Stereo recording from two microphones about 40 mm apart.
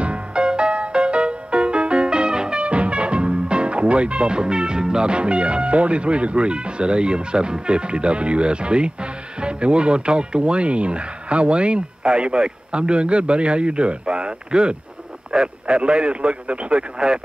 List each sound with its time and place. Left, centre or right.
0.0 s music: right
9.4 s speech: right